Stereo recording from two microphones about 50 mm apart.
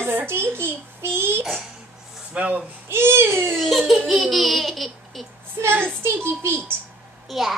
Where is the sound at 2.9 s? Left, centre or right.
Right.